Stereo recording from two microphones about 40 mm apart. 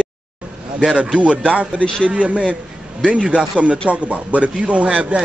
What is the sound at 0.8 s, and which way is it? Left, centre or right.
Speech, centre.